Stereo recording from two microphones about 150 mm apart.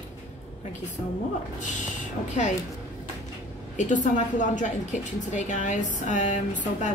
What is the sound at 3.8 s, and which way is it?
A woman's voice, 55° left (ahead or behind).